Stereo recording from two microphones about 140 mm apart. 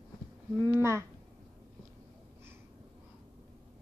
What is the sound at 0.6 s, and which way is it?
Speech, 20° right (ahead or behind).